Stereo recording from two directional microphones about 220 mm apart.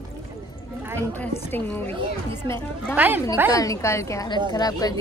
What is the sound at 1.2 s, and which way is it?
A woman's voice, 10° left (ahead or behind).